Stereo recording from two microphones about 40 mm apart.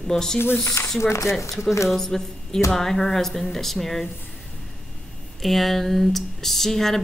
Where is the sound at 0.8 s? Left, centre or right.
Left.